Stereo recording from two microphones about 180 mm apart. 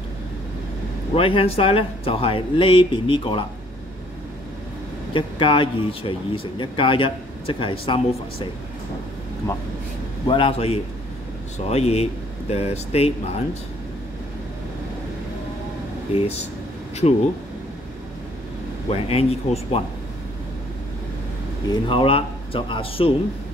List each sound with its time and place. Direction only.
1.1 s speech: 30° left (ahead or behind)
5.1 s speech: 30° left (ahead or behind)
10.2 s speech: 30° left (ahead or behind)
16.1 s speech: 35° left (ahead or behind)
18.9 s speech: 35° left (ahead or behind)
21.6 s speech: 25° left (ahead or behind)